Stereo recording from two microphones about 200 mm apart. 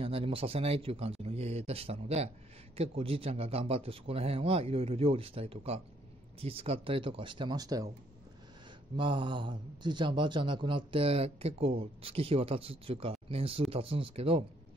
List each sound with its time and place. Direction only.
0.0 s a man's voice: 30° right (ahead or behind)
8.9 s a man's voice: 25° right (ahead or behind)